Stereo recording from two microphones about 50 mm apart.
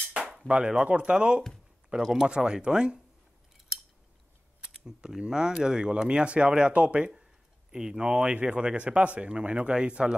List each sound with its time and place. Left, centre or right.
0.5 s speech: right
4.8 s speech: centre
7.7 s speech: centre